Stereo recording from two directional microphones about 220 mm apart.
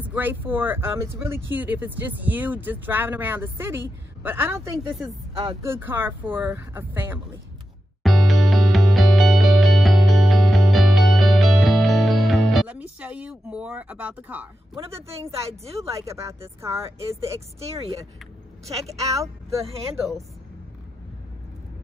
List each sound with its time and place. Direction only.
0.0 s speech: 10° right (ahead or behind)
8.0 s music: centre (ahead or behind)
15.6 s speech: 30° right (ahead or behind)
15.9 s speech: 15° right (ahead or behind)
17.7 s speech: 25° right (ahead or behind)